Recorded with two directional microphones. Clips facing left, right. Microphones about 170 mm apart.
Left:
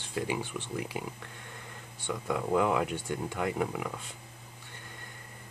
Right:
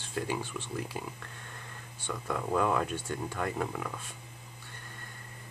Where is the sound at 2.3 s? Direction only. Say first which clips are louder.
Left 2 dB; 15° left (ahead or behind).